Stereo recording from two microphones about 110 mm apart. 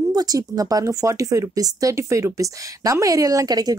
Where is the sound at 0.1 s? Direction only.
35° right (ahead or behind).